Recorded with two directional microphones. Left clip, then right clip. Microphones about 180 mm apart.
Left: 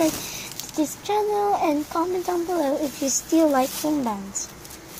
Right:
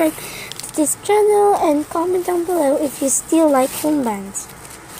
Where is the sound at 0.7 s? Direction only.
20° right (ahead or behind).